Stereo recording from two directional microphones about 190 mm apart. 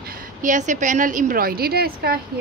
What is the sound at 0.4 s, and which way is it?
A woman's voice, 40° right (ahead or behind).